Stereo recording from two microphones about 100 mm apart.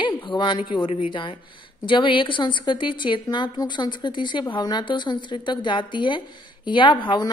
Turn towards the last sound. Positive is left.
turn(degrees=55)  # may be behind; listen again after turning